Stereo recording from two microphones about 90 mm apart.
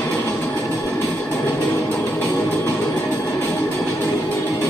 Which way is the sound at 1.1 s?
20° left (ahead or behind).